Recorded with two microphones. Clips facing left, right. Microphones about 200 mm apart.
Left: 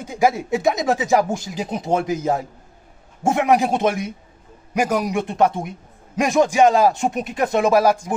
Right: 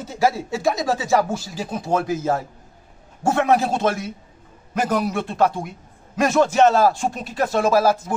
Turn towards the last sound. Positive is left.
turn(degrees=15)  # may be behind; listen again after turning